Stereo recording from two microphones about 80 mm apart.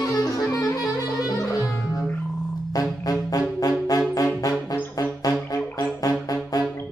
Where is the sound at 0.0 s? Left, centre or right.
Left.